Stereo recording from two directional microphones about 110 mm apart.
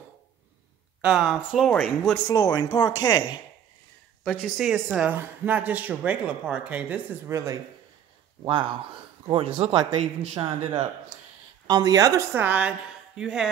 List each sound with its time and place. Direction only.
1.0 s speech: 5° right (ahead or behind)
2.2 s speech: 35° left (ahead or behind)
4.2 s speech: 5° left (ahead or behind)
5.0 s speech: 15° right (ahead or behind)
7.2 s a woman's voice: 30° right (ahead or behind)
8.5 s a man's voice: 55° right (ahead or behind)
9.8 s speech: 45° right (ahead or behind)
11.6 s a woman's voice: 40° right (ahead or behind); by 13.5 s 5° right (ahead or behind)